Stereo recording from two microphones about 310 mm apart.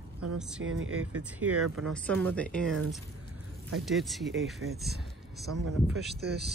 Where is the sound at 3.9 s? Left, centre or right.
Centre.